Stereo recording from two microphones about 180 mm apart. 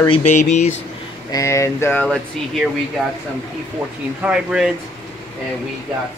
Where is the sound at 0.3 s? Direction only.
40° left (ahead or behind).